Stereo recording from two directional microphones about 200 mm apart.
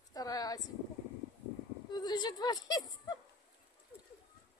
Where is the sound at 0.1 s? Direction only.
20° left (ahead or behind).